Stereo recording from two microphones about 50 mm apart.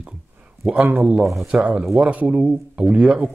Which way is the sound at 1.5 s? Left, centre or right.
Right.